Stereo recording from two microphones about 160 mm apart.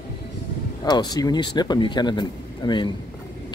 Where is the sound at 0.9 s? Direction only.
25° left (ahead or behind).